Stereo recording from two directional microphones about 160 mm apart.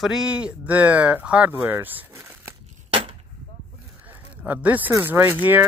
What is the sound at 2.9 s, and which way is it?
Gunshot, 35° right (ahead or behind).